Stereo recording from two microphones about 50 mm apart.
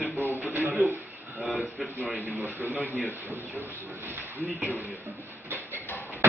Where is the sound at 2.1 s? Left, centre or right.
Right.